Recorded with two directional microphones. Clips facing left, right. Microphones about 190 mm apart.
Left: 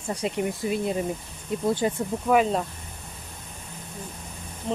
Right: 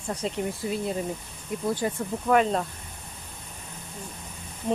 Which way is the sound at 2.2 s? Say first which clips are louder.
Left 1 dB; 5° left (ahead or behind).